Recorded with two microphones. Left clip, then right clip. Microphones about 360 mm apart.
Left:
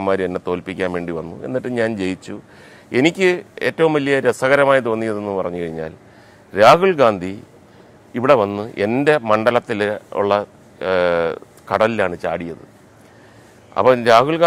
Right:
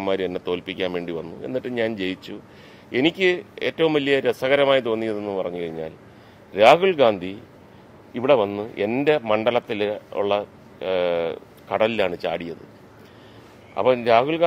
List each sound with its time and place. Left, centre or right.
0.0 s a man's voice: left
13.7 s speech: left